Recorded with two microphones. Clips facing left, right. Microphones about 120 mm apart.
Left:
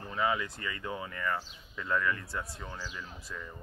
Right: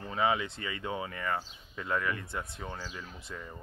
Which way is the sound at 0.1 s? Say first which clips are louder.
Right 2 dB; 20° right (ahead or behind).